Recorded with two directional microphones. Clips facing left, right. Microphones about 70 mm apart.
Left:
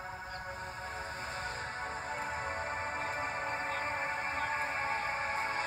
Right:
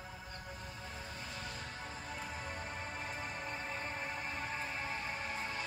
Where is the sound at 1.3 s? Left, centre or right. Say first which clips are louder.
Left 6 dB; left.